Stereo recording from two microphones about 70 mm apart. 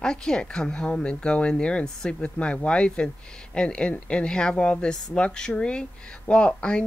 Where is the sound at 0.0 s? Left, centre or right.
Centre.